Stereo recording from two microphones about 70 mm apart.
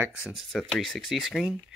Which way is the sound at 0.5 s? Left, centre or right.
Centre.